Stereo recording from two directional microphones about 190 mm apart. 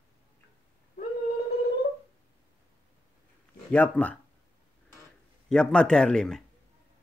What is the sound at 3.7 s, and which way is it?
Speech, 10° left (ahead or behind).